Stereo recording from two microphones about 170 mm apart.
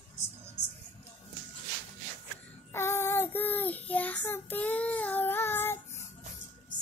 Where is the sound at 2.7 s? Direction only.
15° left (ahead or behind).